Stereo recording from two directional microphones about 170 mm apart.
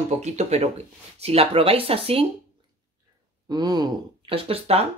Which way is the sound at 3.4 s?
25° right (ahead or behind).